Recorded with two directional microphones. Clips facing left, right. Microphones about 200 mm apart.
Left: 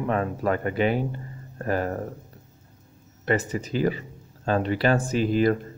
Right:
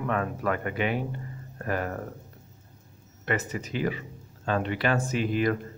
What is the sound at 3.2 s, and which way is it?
Speech, 30° left (ahead or behind).